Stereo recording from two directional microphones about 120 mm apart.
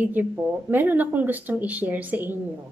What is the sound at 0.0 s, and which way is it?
A woman's voice, 15° right (ahead or behind).